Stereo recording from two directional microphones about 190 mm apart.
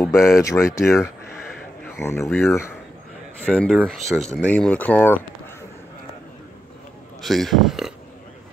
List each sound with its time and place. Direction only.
0.0 s speech: 15° left (ahead or behind)
3.5 s speech: centre (ahead or behind)
7.2 s speech: centre (ahead or behind)